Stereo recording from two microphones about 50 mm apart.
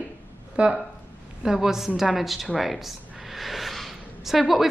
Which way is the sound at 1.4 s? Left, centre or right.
Centre.